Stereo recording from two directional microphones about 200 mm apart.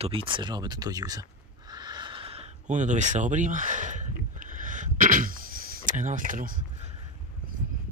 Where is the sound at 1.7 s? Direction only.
20° right (ahead or behind); by 6.6 s 45° right (ahead or behind).